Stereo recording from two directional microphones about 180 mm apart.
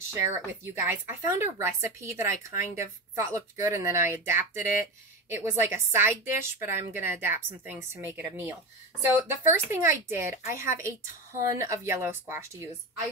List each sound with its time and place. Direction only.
0.1 s a woman's voice: 15° right (ahead or behind)